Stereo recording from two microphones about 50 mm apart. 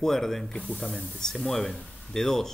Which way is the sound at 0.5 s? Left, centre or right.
Left.